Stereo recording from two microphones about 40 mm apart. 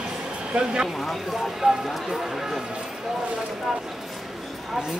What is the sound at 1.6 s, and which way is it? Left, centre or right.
Speech, centre.